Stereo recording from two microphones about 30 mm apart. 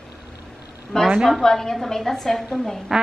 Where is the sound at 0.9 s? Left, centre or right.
Left.